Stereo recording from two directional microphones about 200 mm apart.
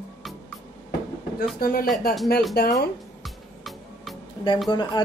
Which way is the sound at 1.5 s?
45° left (ahead or behind).